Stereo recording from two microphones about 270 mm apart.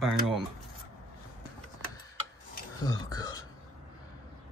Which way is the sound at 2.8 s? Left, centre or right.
Centre.